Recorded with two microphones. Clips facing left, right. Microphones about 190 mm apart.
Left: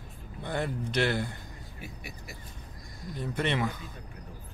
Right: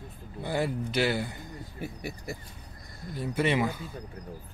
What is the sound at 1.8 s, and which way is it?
Speech, 55° right (ahead or behind).